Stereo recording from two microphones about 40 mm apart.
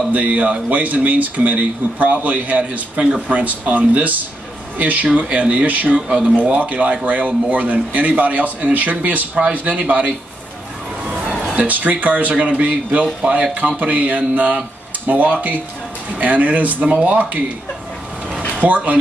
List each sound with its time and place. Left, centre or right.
0.1 s speech: right
5.9 s speech: centre
6.3 s speech: right
11.1 s a sound: right
11.5 s speech: right
18.6 s speech: right